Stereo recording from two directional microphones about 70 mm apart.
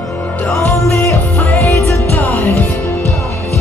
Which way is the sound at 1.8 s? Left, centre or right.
Left.